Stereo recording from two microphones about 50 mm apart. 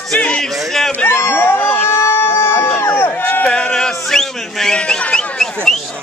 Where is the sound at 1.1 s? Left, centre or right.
Left.